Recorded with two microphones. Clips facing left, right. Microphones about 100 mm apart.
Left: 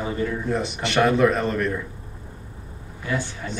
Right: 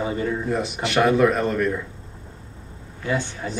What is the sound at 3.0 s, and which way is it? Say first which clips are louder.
Speech: right 2 dB; 20° right (ahead or behind).